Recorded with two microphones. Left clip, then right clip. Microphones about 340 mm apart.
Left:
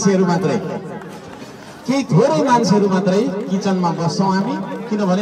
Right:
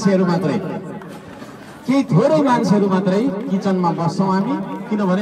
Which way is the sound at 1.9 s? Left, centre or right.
Centre.